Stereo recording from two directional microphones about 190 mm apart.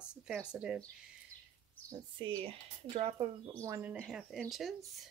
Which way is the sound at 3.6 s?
10° right (ahead or behind).